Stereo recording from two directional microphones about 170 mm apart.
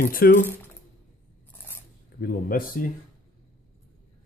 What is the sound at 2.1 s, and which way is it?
Speech, 55° left (ahead or behind).